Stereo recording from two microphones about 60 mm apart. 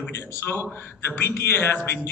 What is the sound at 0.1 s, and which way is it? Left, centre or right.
A man's voice, left.